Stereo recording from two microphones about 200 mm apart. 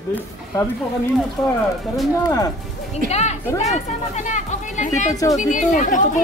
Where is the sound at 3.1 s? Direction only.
35° left (ahead or behind).